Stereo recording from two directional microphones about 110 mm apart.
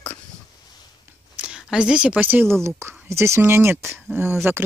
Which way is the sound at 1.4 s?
10° right (ahead or behind).